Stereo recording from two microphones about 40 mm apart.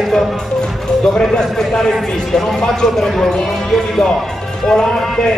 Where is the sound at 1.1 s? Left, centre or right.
Left.